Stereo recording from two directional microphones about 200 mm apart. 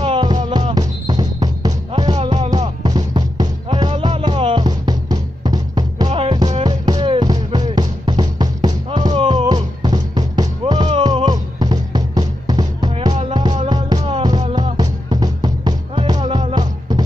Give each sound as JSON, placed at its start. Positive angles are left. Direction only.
{"t": 0.0, "sound": "music", "side_deg": -25}